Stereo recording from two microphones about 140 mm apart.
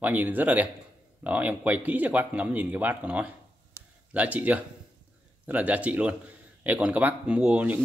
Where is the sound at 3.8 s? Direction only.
20° left (ahead or behind).